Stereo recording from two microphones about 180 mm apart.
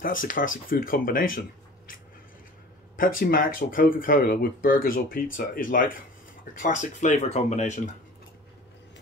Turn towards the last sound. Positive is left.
turn(degrees=45)  # may be behind; listen again after turning